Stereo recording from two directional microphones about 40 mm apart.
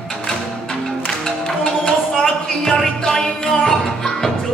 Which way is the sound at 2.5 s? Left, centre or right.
Centre.